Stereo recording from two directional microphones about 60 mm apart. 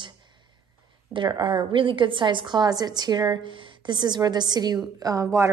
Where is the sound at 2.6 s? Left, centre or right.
Right.